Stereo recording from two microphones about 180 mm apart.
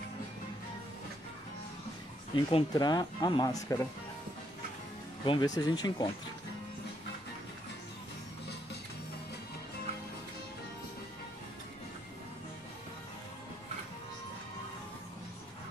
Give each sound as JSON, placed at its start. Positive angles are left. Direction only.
{"t": 2.3, "sound": "speech", "side_deg": 25}
{"t": 5.2, "sound": "speech", "side_deg": 25}